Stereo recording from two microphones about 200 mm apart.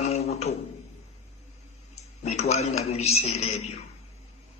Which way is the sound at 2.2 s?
35° left (ahead or behind).